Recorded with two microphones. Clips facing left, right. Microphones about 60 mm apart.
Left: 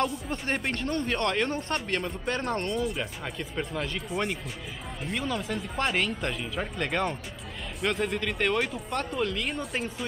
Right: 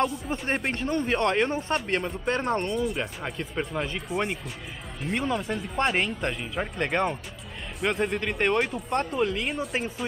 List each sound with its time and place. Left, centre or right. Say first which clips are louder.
0.0 s speech: right 2 dB; centre
5.9 s speech: right 1 dB; centre
7.8 s speech: right 2 dB; centre